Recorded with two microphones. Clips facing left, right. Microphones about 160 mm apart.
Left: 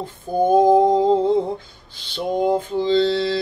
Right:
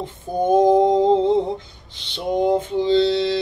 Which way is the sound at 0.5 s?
20° right (ahead or behind).